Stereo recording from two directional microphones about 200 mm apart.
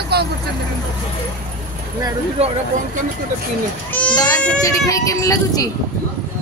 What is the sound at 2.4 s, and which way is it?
Speech, 30° right (ahead or behind).